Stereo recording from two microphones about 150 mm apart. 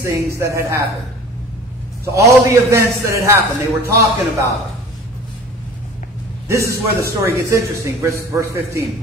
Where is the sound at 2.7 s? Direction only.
20° right (ahead or behind).